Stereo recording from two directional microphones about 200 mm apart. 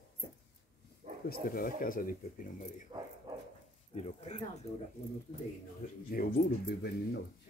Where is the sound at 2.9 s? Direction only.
20° right (ahead or behind).